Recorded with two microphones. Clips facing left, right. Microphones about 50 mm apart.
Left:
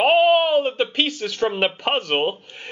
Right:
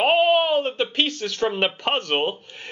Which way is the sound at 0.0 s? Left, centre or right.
Centre.